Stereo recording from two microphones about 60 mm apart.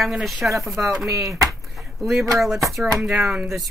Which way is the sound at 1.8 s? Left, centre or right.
Centre.